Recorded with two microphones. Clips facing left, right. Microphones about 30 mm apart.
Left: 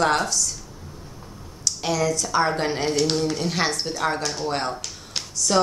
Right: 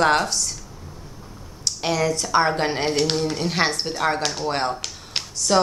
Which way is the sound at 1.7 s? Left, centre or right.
Right.